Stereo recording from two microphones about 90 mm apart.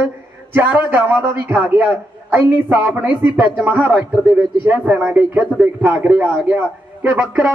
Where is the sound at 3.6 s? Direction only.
20° right (ahead or behind).